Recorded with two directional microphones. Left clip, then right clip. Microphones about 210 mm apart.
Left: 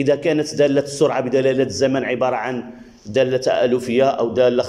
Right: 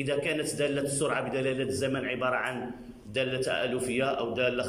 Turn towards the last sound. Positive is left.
turn(degrees=20)  # may be behind; listen again after turning